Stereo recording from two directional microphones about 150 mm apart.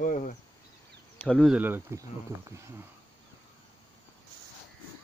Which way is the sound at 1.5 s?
15° right (ahead or behind).